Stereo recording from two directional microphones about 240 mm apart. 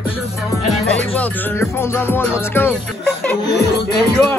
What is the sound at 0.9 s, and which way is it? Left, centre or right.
Music, centre.